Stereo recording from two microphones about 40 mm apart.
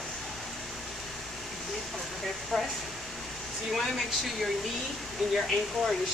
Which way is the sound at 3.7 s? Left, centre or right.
Centre.